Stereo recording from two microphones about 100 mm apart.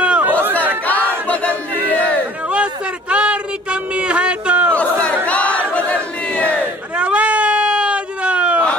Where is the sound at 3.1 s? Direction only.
10° right (ahead or behind).